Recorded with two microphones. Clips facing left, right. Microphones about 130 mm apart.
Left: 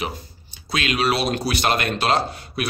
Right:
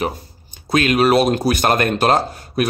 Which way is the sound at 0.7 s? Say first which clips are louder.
Right 7 dB; 45° right (ahead or behind).